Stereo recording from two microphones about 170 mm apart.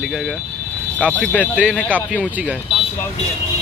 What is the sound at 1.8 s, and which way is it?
Speech, 10° left (ahead or behind).